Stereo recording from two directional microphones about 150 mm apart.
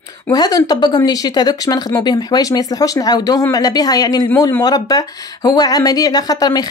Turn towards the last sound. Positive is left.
turn(degrees=25)  # may be behind; listen again after turning